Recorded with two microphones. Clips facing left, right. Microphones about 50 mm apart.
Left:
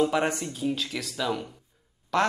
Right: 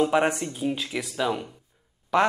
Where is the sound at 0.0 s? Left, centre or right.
Centre.